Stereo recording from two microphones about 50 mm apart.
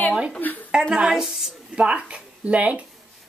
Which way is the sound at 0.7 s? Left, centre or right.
Centre.